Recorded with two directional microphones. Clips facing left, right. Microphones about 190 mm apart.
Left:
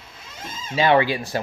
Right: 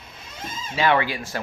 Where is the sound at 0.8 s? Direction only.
25° left (ahead or behind).